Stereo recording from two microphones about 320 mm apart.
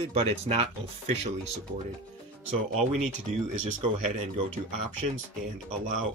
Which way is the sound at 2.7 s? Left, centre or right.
Centre.